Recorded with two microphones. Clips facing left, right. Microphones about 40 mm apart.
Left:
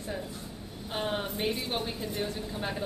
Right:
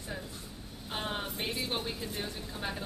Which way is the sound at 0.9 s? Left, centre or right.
Centre.